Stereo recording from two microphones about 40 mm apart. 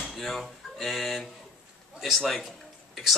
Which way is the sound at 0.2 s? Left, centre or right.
Centre.